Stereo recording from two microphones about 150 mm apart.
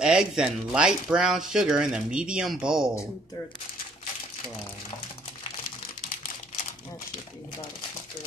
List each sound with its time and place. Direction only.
0.0 s speech: 5° right (ahead or behind)